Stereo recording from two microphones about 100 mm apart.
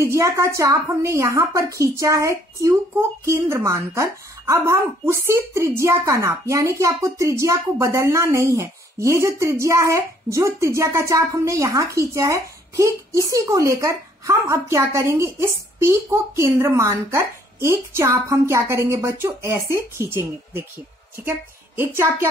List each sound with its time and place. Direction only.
0.0 s a woman's voice: 30° right (ahead or behind)